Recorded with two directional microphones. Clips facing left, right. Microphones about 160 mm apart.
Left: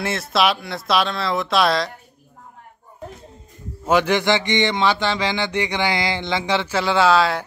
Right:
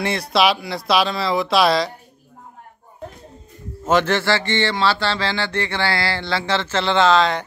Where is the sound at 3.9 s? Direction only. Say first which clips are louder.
Even; 10° left (ahead or behind).